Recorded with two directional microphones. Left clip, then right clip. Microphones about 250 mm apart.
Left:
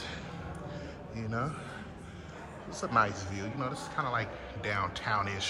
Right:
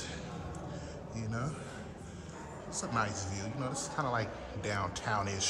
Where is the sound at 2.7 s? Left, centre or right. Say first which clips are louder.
Left 6 dB; centre.